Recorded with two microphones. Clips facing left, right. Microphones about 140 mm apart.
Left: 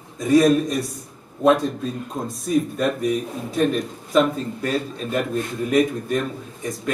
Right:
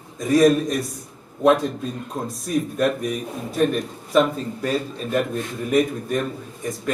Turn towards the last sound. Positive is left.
turn(degrees=0)  # may be behind; listen again after turning